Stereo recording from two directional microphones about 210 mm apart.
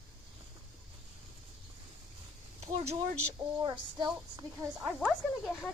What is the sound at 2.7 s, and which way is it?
A woman's voice, 30° right (ahead or behind).